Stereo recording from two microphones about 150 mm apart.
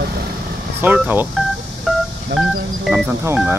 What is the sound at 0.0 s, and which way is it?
Vehicle, 90° right.